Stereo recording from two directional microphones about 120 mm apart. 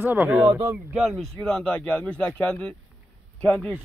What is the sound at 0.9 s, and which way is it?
Speech, centre (ahead or behind).